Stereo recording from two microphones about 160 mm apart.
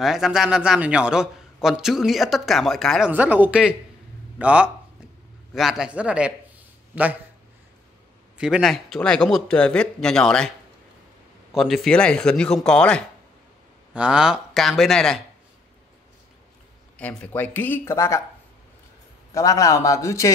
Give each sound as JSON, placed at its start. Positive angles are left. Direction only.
{"t": 0.0, "sound": "a man's voice", "side_deg": 0}
{"t": 3.1, "sound": "speech", "side_deg": -10}
{"t": 8.4, "sound": "a man's voice", "side_deg": -5}
{"t": 11.5, "sound": "a man's voice", "side_deg": 0}
{"t": 13.9, "sound": "a man's voice", "side_deg": -5}
{"t": 17.0, "sound": "speech", "side_deg": 10}
{"t": 19.3, "sound": "a man's voice", "side_deg": 20}